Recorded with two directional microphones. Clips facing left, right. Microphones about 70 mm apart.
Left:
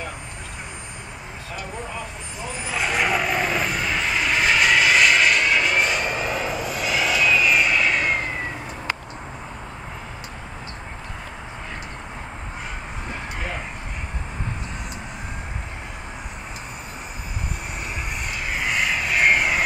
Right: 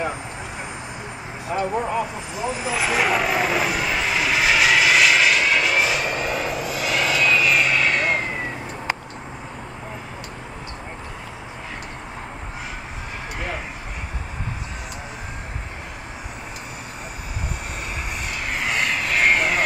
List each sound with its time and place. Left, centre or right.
1.5 s speech: right
2.3 s vehicle: centre
18.5 s vehicle: centre